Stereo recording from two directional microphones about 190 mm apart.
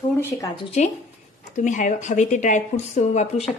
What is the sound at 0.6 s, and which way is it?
Speech, 35° left (ahead or behind).